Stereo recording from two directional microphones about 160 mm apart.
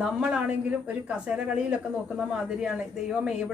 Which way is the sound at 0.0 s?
5° right (ahead or behind).